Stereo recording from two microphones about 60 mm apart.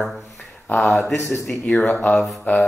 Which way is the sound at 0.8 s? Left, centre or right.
Left.